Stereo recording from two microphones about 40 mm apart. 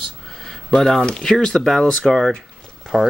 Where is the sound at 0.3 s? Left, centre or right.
Centre.